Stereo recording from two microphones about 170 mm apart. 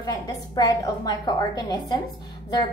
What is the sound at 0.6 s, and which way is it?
A woman's voice, 25° left (ahead or behind).